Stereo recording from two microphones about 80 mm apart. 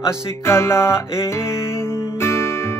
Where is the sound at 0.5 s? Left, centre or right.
Left.